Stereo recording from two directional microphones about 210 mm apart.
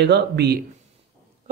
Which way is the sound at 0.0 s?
50° right (ahead or behind).